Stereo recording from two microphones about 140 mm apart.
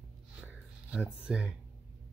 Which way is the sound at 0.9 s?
5° right (ahead or behind).